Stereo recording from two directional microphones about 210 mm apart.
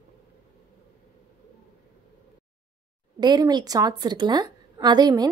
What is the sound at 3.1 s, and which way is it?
A woman's voice, 20° right (ahead or behind).